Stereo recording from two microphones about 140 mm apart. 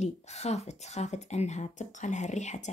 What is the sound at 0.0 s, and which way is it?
Speech, 50° left (ahead or behind).